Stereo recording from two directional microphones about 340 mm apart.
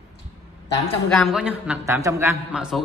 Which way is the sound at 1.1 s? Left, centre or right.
Centre.